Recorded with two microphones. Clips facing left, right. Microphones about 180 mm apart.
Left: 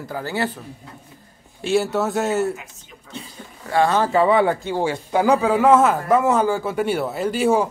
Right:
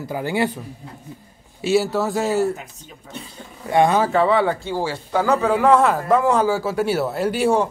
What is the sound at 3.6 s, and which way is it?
Speech, 20° right (ahead or behind).